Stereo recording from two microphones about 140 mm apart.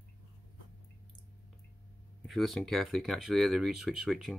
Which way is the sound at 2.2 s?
Centre (ahead or behind).